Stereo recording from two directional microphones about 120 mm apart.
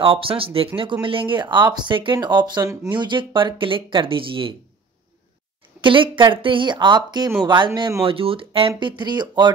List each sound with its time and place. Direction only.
0.0 s speech: 45° right (ahead or behind); by 2.9 s 30° right (ahead or behind)
2.9 s speech: 40° right (ahead or behind)
5.8 s speech: 45° right (ahead or behind)